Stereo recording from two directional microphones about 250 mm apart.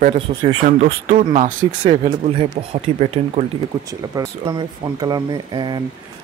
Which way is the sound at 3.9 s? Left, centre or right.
Centre.